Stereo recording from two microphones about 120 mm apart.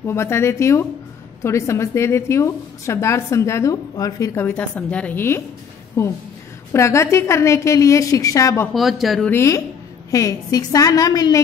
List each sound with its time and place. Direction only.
0.0 s a woman's voice: 20° left (ahead or behind)
8.7 s speech: centre (ahead or behind)
9.2 s a woman's voice: 20° left (ahead or behind)